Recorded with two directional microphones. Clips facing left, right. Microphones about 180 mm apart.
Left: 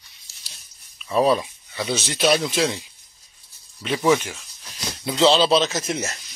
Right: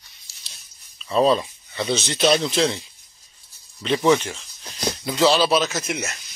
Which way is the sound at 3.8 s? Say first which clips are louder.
Right 1 dB; 5° left (ahead or behind).